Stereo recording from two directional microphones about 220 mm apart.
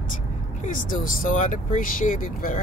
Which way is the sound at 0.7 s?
35° left (ahead or behind).